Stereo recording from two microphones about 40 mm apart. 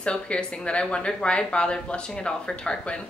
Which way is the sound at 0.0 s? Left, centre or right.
Left.